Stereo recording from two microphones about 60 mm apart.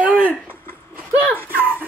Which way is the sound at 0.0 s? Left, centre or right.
Centre.